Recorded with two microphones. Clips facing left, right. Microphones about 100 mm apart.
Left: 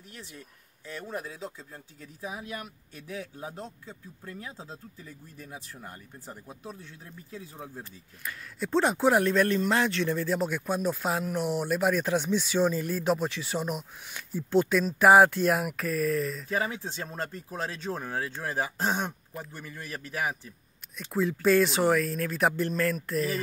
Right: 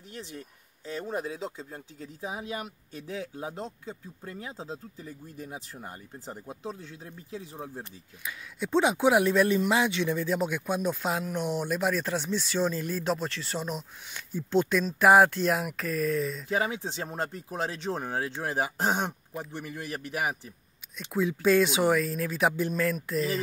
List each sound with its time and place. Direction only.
0.1 s speech: 25° right (ahead or behind)
8.2 s speech: centre (ahead or behind)
16.4 s speech: 15° right (ahead or behind)
21.1 s speech: centre (ahead or behind)